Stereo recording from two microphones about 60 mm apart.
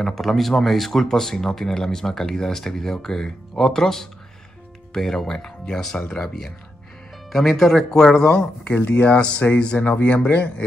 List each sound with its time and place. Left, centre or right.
0.0 s speech: centre
8.7 s speech: left
9.1 s speech: left